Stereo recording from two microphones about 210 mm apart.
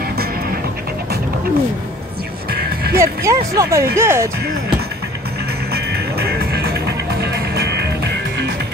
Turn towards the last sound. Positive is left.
turn(degrees=-50)  # may be behind; listen again after turning